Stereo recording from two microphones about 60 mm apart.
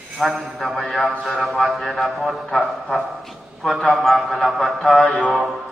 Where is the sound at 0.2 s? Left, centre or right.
Centre.